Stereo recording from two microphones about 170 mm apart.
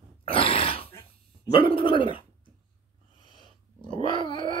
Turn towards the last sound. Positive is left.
turn(degrees=30)  # may be behind; listen again after turning